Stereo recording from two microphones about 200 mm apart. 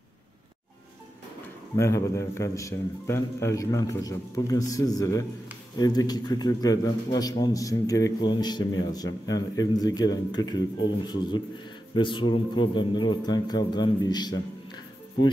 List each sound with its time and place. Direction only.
1.8 s a man's voice: 15° left (ahead or behind)